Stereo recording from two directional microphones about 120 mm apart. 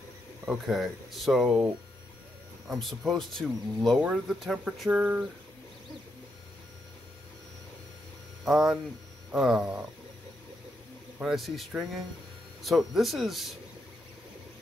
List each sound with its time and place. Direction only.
0.5 s speech: centre (ahead or behind)
2.7 s speech: centre (ahead or behind)
8.5 s speech: 5° right (ahead or behind)
11.1 s speech: centre (ahead or behind)